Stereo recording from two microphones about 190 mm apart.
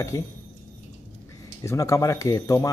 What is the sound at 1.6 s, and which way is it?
Speech, 15° left (ahead or behind).